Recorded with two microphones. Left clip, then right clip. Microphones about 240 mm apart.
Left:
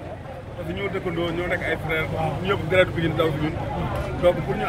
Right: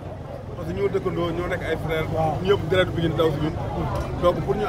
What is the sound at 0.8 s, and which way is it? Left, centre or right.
Speech, right.